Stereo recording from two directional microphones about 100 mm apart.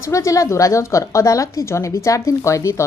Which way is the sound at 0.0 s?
30° left (ahead or behind).